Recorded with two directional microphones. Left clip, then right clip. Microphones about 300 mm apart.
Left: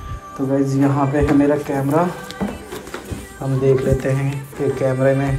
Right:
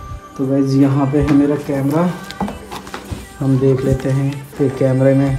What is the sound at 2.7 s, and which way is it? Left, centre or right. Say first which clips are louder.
Music: right 2 dB; centre.